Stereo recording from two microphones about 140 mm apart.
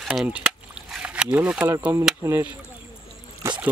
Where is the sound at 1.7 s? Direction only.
20° right (ahead or behind).